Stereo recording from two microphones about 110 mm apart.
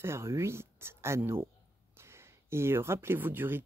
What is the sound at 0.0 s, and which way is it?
Speech, 25° right (ahead or behind).